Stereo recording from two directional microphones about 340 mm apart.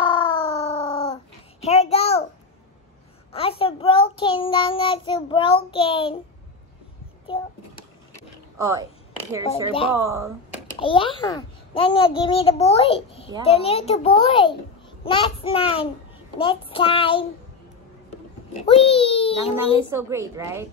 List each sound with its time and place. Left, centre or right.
0.0 s a sound: centre
3.3 s child singing: centre
7.3 s a child's voice: centre
8.5 s speech: centre
9.4 s a child's voice: centre
10.0 s a woman's voice: centre
10.5 s a child's voice: centre
18.9 s a child's voice: centre
19.8 s a woman's voice: centre